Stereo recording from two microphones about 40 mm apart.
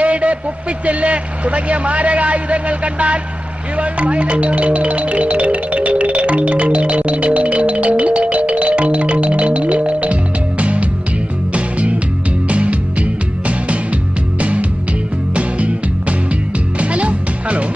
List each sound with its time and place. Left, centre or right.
0.0 s a sound: right
0.8 s a man's voice: right
3.7 s music: right
14.4 s music: right